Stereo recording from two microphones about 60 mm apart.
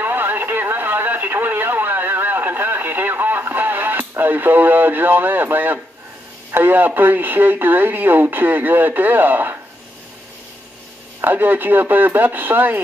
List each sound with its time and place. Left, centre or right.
0.0 s radio: right
4.2 s speech: right
11.1 s speech: right